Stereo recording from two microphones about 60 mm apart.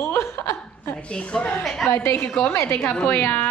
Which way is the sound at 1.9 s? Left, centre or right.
Left.